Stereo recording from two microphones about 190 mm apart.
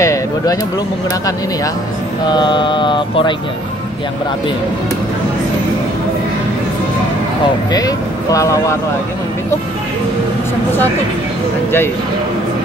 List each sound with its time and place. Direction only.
0.0 s a sound: 15° left (ahead or behind)
2.2 s mantra: 25° left (ahead or behind)
7.7 s speech: 20° left (ahead or behind)